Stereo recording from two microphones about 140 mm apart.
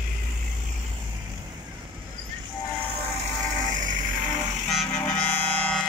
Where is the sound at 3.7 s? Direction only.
65° right (ahead or behind).